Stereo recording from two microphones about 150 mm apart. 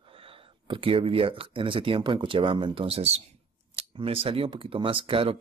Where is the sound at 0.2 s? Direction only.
35° right (ahead or behind).